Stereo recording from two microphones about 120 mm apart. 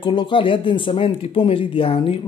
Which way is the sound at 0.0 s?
45° left (ahead or behind).